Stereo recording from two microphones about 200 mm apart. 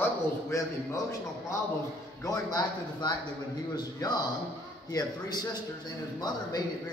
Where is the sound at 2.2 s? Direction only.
15° left (ahead or behind).